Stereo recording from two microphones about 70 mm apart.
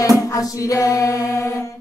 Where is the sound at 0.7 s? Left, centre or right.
Left.